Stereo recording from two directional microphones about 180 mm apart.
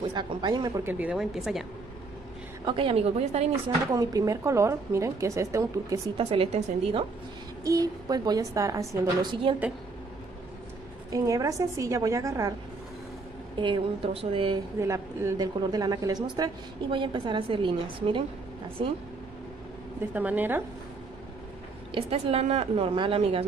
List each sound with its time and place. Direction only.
0.1 s speech: 25° right (ahead or behind); by 1.6 s centre (ahead or behind)
2.6 s a woman's voice: 30° right (ahead or behind)
3.9 s speech: 20° right (ahead or behind)
6.1 s a woman's voice: 30° right (ahead or behind)
7.6 s a woman's voice: 20° right (ahead or behind)
11.1 s speech: 20° right (ahead or behind)
13.6 s a woman's voice: 30° right (ahead or behind)
14.8 s a woman's voice: 15° right (ahead or behind)
20.2 s speech: 10° right (ahead or behind)
21.9 s a woman's voice: 35° right (ahead or behind)